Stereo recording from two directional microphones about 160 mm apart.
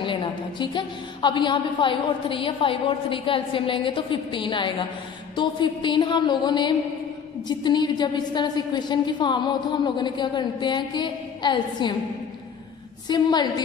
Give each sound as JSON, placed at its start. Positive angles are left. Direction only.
{"t": 0.0, "sound": "a woman's voice", "side_deg": 30}
{"t": 13.1, "sound": "a woman's voice", "side_deg": 25}